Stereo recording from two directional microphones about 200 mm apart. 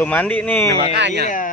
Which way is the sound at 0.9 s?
55° right (ahead or behind).